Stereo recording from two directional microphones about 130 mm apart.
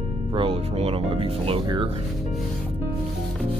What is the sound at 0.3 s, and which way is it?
Speech, 45° right (ahead or behind).